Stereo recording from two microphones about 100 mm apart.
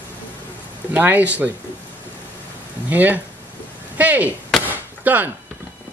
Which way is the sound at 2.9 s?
15° right (ahead or behind).